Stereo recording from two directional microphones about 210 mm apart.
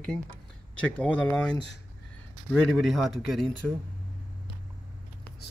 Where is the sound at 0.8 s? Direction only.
5° left (ahead or behind).